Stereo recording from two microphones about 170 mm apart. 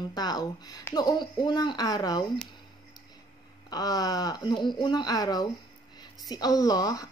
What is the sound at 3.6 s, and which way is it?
Speech, 25° left (ahead or behind).